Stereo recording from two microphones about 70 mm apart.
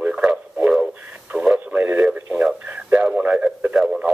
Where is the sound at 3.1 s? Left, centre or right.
Centre.